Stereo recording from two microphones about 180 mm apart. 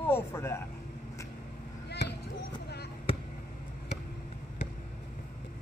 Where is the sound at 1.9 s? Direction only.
70° left (ahead or behind).